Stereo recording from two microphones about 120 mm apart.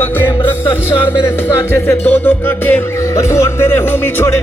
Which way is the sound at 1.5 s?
15° left (ahead or behind).